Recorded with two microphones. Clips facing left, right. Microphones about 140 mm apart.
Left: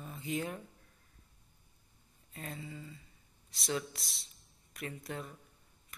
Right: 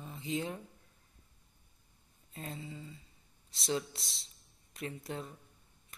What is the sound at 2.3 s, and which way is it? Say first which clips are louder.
Speech: right 1 dB; 25° right (ahead or behind).